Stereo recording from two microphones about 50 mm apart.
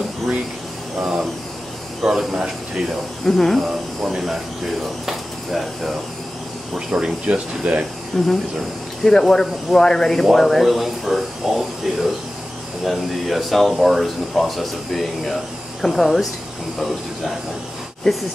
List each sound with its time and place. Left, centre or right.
2.0 s speech: centre
3.3 s speech: centre
3.6 s speech: centre
6.9 s speech: right
8.1 s speech: centre
18.1 s speech: centre